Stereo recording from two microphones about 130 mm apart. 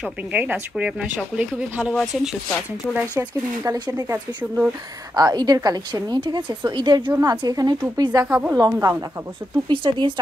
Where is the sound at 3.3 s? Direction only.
30° right (ahead or behind).